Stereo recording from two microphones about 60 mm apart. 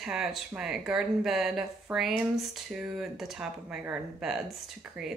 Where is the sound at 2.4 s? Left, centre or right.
Centre.